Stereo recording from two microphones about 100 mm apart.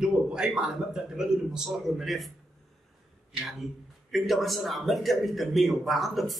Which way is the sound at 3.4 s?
Centre (ahead or behind).